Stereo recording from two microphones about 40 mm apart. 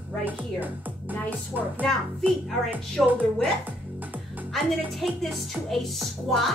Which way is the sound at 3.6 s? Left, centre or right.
Right.